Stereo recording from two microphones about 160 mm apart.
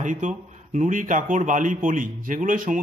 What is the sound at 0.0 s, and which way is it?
A man's voice, 50° right (ahead or behind).